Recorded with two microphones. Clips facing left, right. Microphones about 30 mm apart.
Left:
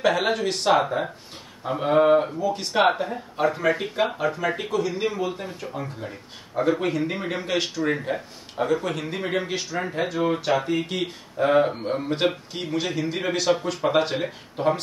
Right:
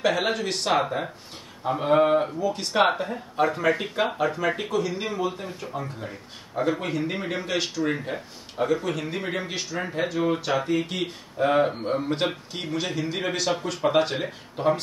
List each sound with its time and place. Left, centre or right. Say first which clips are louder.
0.0 s speech: left 2 dB; centre